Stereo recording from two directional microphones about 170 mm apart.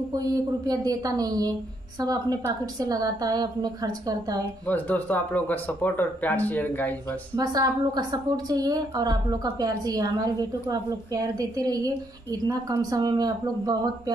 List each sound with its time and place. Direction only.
0.1 s a woman's voice: 20° right (ahead or behind)
4.6 s speech: 10° left (ahead or behind)
7.3 s a woman's voice: 20° right (ahead or behind)